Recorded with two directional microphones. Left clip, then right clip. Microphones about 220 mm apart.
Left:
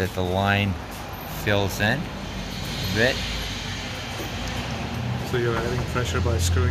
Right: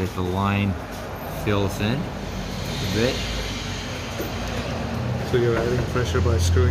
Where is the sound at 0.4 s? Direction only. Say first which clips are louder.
Left 3 dB; 15° left (ahead or behind).